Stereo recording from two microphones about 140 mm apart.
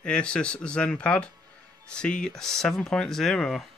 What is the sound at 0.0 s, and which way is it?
Speech, 5° left (ahead or behind).